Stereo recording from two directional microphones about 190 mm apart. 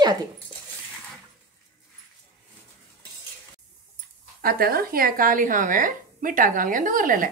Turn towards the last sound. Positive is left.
turn(degrees=-45)  # may be behind; listen again after turning